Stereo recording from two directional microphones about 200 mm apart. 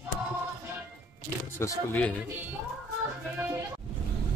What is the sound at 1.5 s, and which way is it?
Speech, 10° left (ahead or behind).